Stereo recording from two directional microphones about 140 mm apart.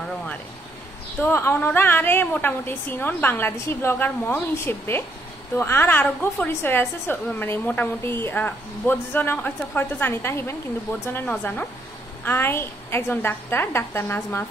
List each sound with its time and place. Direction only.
1.2 s a woman's voice: 15° left (ahead or behind)